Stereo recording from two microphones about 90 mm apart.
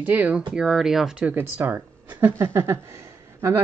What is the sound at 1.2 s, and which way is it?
Speech, 20° right (ahead or behind).